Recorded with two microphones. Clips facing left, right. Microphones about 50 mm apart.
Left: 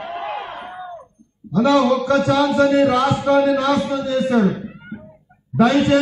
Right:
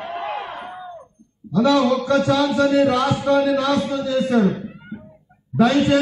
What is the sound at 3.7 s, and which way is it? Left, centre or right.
Speech, centre.